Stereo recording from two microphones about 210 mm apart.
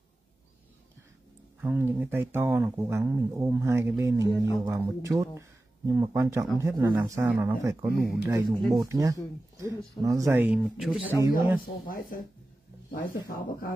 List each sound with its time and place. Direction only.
1.6 s speech: 10° right (ahead or behind)
11.1 s speech: 10° right (ahead or behind)
11.6 s speech: 45° left (ahead or behind)